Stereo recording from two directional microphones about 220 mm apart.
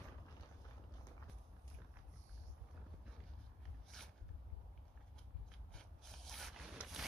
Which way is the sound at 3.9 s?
Centre (ahead or behind).